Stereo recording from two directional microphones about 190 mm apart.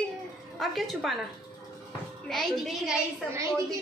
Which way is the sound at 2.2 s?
Centre (ahead or behind).